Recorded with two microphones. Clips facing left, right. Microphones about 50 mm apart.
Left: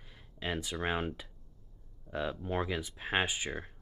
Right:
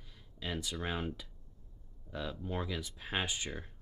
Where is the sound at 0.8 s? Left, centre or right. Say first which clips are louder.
Left 4 dB; left.